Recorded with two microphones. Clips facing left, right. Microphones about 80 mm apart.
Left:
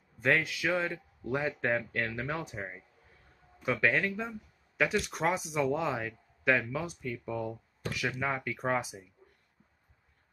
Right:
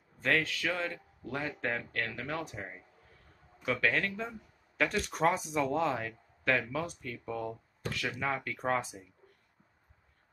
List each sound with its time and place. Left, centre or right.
0.2 s speech: centre
3.8 s speech: centre